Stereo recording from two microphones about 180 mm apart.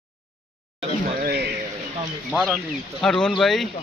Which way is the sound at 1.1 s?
55° right (ahead or behind).